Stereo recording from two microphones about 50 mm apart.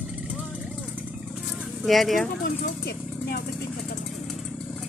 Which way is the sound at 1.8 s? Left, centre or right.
Centre.